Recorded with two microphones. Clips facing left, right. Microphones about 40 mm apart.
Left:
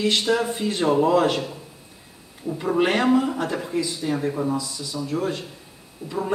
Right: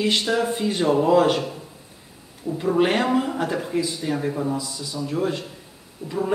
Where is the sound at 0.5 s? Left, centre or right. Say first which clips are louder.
Right 1 dB; centre.